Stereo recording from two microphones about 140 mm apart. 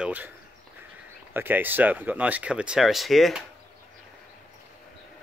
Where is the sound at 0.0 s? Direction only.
10° right (ahead or behind).